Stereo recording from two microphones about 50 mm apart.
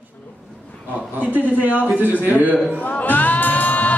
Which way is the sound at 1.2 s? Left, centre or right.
Right.